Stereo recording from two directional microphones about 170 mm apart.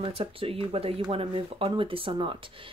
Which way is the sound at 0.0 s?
30° right (ahead or behind).